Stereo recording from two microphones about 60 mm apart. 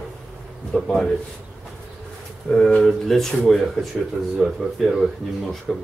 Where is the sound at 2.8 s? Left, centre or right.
Centre.